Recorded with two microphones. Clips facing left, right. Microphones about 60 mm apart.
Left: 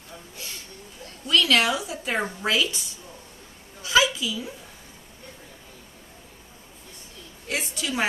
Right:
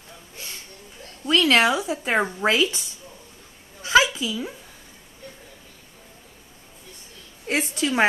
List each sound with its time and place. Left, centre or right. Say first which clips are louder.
1.2 s a woman's voice: right 3 dB; right
3.8 s a sound: right 3 dB; right
7.4 s a woman's voice: right 6 dB; right